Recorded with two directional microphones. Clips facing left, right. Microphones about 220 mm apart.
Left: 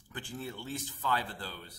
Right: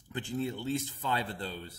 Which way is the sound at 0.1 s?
25° right (ahead or behind).